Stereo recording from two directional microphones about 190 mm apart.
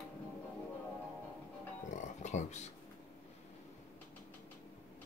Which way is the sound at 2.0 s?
40° left (ahead or behind).